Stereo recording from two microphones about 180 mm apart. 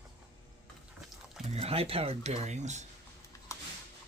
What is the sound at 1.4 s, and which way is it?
Speech, 35° right (ahead or behind).